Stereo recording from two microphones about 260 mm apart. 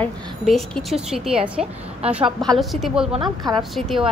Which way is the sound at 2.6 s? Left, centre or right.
Centre.